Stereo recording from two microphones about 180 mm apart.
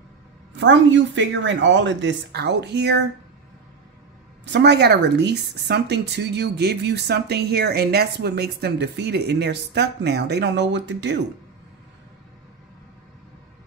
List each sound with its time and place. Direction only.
0.6 s speech: 90° right; by 3.0 s 65° right (ahead or behind)
4.5 s speech: 70° right (ahead or behind)